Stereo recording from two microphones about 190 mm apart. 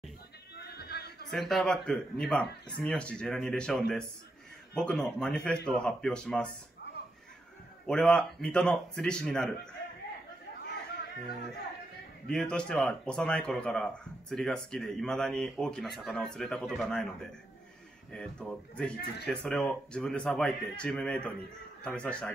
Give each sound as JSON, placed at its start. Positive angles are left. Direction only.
{"t": 0.6, "sound": "a sound", "side_deg": 60}
{"t": 1.3, "sound": "speech", "side_deg": 0}
{"t": 7.8, "sound": "speech", "side_deg": 5}
{"t": 10.6, "sound": "chatter", "side_deg": 60}
{"t": 12.3, "sound": "speech", "side_deg": 5}
{"t": 18.1, "sound": "speech", "side_deg": 5}